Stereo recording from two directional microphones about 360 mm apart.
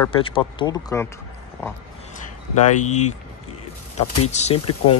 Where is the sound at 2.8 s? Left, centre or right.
Centre.